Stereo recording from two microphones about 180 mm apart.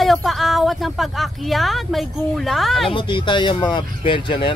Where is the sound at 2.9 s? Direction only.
25° left (ahead or behind).